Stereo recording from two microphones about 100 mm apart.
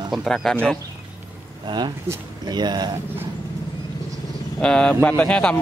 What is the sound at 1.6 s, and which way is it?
Speech, 50° right (ahead or behind).